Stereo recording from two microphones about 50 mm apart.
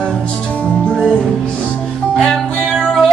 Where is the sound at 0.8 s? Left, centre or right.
Centre.